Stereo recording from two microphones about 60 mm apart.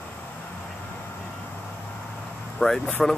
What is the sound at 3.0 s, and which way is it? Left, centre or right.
Speech, centre.